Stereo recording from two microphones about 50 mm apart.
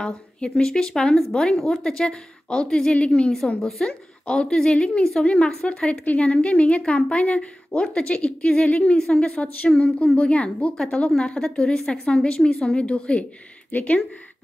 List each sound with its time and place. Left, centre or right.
0.0 s a woman's voice: centre
3.3 s a woman's voice: centre
4.3 s a woman's voice: centre